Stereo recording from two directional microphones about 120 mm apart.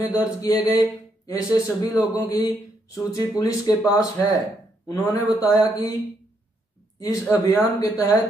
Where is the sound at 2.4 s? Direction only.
30° left (ahead or behind).